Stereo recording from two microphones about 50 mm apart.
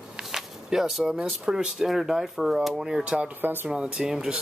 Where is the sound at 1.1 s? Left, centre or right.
Centre.